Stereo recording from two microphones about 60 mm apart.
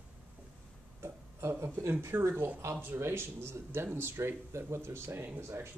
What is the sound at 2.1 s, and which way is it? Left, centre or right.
Speech, right.